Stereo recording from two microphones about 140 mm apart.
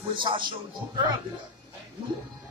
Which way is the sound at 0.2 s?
35° right (ahead or behind).